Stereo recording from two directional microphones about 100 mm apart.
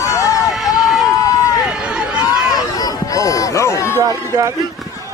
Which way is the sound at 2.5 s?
40° left (ahead or behind).